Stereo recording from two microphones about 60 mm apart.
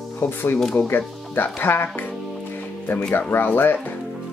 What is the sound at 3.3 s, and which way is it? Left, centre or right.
Speech, left.